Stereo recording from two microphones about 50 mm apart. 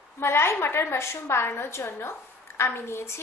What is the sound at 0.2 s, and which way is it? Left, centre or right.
A woman's voice, left.